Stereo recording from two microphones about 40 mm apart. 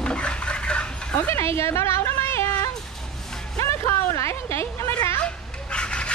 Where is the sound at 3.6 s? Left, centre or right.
Left.